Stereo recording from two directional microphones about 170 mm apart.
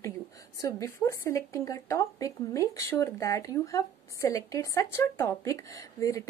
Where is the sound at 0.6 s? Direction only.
20° left (ahead or behind).